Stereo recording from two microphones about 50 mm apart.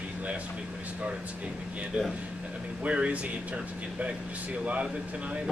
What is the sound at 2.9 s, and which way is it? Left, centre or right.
Speech, right.